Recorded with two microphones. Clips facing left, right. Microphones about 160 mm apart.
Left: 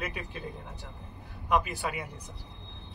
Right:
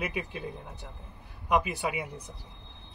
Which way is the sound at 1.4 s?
15° right (ahead or behind).